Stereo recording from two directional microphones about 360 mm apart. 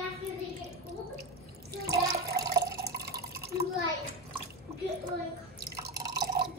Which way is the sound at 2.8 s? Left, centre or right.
Right.